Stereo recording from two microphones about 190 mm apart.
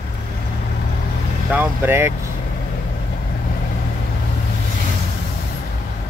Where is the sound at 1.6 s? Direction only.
10° right (ahead or behind).